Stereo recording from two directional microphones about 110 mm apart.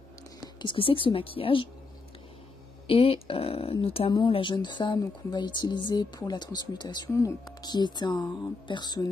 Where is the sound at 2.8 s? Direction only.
60° left (ahead or behind).